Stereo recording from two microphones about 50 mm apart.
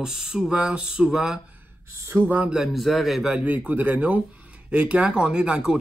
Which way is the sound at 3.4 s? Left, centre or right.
Right.